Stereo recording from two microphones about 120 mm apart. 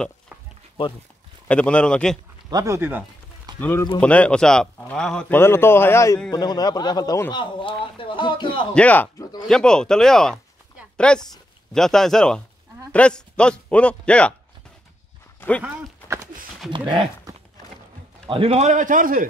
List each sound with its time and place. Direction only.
1.5 s a man's voice: 10° left (ahead or behind)
2.5 s speech: 25° right (ahead or behind)
3.5 s a man's voice: 15° left (ahead or behind)
5.4 s a man's voice: 20° left (ahead or behind)
6.3 s a man's voice: 35° left (ahead or behind)
8.7 s a man's voice: 15° left (ahead or behind)
15.4 s a sound: 20° left (ahead or behind)
16.7 s a man's voice: 40° right (ahead or behind); by 18.9 s 90° right